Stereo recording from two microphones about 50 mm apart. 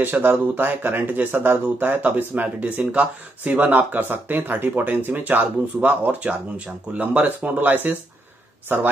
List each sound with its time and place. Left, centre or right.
0.0 s speech: right